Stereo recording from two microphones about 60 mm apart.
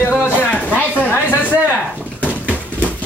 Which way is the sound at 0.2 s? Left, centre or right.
Left.